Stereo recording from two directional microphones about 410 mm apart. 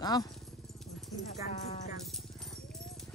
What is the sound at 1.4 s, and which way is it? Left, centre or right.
Music, centre.